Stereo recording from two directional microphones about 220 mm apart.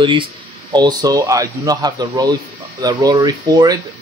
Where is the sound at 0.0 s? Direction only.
20° right (ahead or behind).